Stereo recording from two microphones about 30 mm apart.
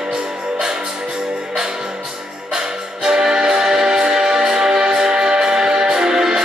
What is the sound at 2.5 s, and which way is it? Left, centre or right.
Music, right.